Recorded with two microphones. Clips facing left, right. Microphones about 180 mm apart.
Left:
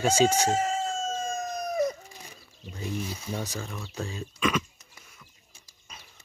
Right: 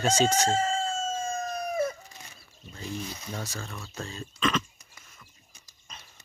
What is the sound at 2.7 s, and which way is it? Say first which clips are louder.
Speech: left 3 dB; 10° left (ahead or behind).